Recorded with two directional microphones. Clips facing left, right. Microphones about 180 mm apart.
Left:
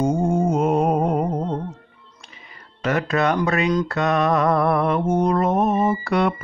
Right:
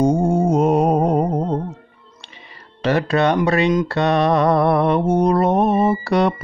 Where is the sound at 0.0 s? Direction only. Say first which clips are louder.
Right 3 dB; 35° right (ahead or behind).